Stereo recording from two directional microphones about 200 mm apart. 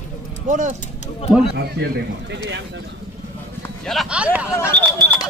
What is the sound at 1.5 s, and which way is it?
A man's voice, 55° right (ahead or behind).